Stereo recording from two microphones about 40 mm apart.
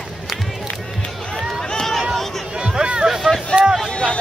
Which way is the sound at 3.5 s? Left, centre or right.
Right.